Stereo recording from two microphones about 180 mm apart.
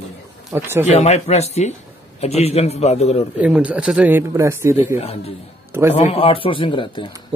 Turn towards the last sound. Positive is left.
turn(degrees=30)  # may be behind; listen again after turning